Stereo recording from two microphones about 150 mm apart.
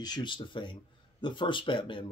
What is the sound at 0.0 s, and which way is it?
Speech, 30° left (ahead or behind).